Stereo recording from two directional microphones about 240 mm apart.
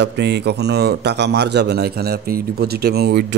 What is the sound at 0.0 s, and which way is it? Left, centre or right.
A man's voice, right.